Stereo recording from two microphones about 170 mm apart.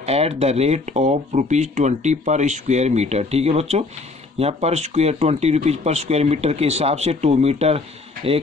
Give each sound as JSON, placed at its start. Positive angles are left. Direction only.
{"t": 0.0, "sound": "speech", "side_deg": -35}